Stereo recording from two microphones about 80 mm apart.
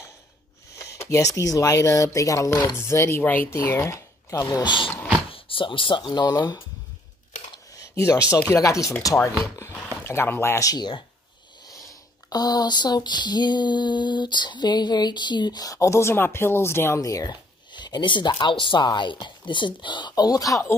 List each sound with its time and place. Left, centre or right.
0.7 s speech: left
8.0 s speech: left
10.0 s speech: left
10.6 s a sound: left
17.0 s speech: left
17.7 s speech: left